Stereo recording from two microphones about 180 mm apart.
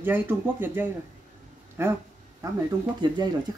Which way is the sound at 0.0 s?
10° right (ahead or behind).